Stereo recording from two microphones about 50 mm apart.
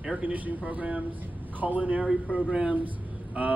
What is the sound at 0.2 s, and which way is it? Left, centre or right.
Speech, right.